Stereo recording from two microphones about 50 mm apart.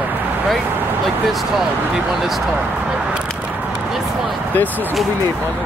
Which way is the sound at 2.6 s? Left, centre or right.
Right.